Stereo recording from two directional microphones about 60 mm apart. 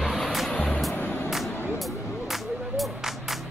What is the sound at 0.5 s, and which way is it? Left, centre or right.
Music, centre.